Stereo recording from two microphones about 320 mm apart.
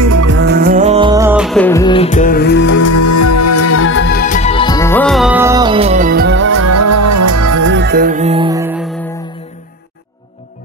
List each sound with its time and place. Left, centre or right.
0.0 s music: right
0.3 s music: right; by 2.7 s left
2.7 s music: left; by 6.6 s right
6.6 s music: right
7.6 s music: right; by 8.8 s centre